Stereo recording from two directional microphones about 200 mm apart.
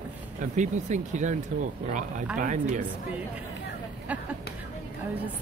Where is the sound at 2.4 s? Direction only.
40° right (ahead or behind).